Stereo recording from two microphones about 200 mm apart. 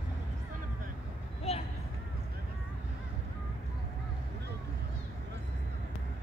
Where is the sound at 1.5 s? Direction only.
30° left (ahead or behind).